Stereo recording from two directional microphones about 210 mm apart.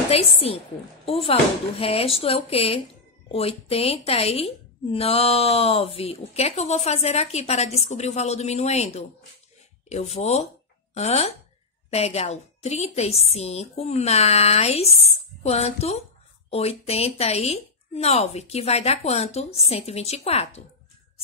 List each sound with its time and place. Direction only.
0.1 s a woman's voice: 30° left (ahead or behind)